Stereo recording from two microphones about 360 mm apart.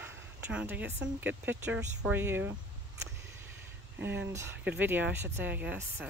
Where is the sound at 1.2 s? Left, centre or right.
Centre.